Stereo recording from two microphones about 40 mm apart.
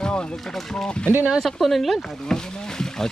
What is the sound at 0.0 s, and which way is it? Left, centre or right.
Boat, left.